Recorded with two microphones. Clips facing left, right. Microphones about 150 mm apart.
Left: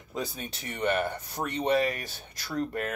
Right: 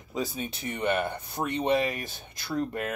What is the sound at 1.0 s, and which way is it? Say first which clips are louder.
Speech: even; 20° right (ahead or behind).